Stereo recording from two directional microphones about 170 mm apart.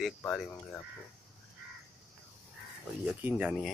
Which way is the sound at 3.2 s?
10° right (ahead or behind).